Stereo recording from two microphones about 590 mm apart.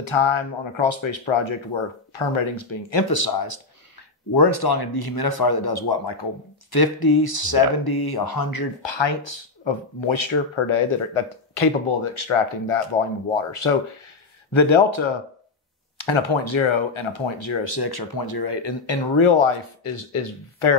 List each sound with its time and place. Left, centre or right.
0.0 s speech: left